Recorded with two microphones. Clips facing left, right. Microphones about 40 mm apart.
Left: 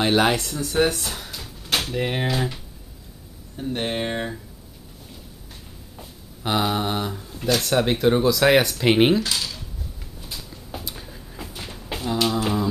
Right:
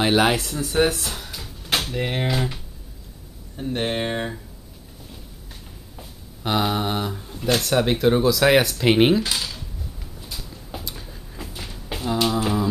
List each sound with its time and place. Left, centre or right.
0.0 s speech: centre
5.9 s a sound: centre
7.6 s speech: centre
9.2 s dishes: centre
10.2 s a sound: centre
12.0 s beatboxing: centre